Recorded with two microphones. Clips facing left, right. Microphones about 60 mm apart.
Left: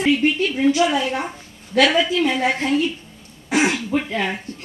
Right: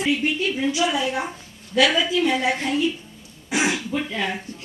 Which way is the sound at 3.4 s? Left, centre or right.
Left.